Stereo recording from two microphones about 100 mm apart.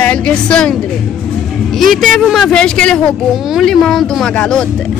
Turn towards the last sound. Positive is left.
turn(degrees=5)  # may be behind; listen again after turning